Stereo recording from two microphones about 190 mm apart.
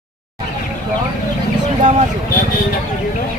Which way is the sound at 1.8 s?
40° right (ahead or behind).